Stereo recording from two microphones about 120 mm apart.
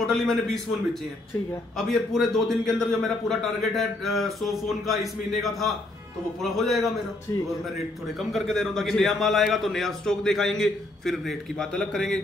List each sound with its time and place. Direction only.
0.0 s a man's voice: 5° left (ahead or behind)
1.8 s a man's voice: 5° left (ahead or behind)
7.3 s speech: 30° left (ahead or behind)
8.2 s a man's voice: centre (ahead or behind)